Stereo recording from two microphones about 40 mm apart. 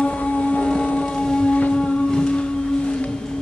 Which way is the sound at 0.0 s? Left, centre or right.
Left.